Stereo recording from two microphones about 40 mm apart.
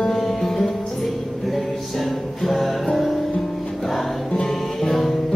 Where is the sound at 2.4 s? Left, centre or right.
Centre.